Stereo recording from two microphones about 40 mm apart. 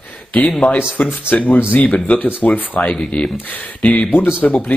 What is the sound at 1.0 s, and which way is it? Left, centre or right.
Speech, left.